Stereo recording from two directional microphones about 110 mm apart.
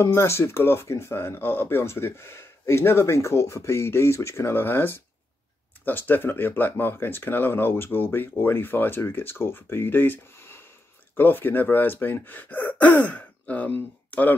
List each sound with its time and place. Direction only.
0.0 s speech: 25° left (ahead or behind)